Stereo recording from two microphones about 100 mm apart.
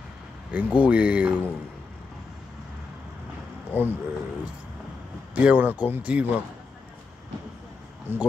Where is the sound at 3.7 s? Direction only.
20° right (ahead or behind).